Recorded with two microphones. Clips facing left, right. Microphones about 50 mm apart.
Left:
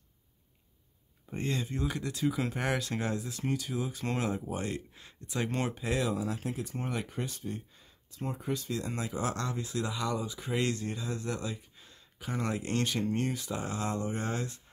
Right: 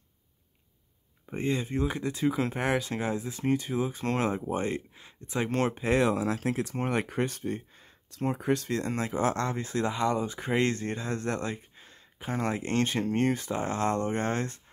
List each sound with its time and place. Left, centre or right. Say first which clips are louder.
1.3 s speech: right 5 dB; centre
3.2 s speech: right 5 dB; right
6.1 s speech: right 6 dB; right
8.1 s speech: right 7 dB; right
11.7 s a sound: right 3 dB; right
13.0 s speech: right 5 dB; right